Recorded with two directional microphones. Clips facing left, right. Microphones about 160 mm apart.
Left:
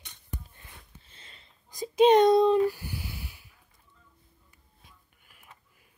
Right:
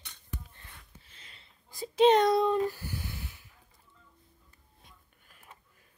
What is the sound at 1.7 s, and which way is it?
A child's voice, 15° left (ahead or behind).